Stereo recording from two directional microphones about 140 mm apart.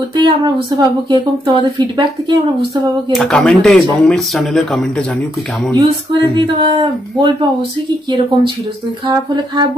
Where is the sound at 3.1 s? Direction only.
5° left (ahead or behind).